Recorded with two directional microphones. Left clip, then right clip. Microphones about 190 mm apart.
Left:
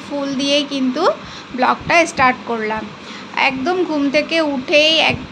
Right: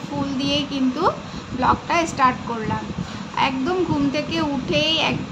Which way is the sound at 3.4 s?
25° left (ahead or behind).